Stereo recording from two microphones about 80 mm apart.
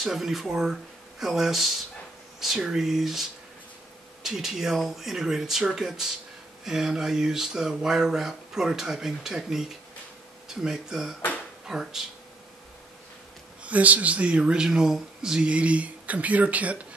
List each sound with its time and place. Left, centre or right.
0.0 s speech: centre
13.7 s speech: centre